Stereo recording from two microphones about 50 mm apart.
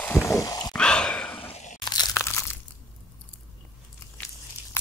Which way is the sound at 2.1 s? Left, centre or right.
Left.